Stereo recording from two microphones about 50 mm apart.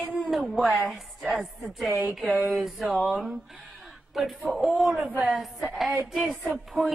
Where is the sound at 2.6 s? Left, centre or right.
Centre.